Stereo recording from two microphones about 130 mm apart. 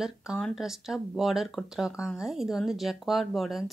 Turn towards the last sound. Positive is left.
turn(degrees=0)  # may be behind; listen again after turning